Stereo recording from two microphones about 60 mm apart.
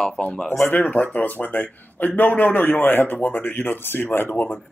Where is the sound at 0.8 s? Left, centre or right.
Left.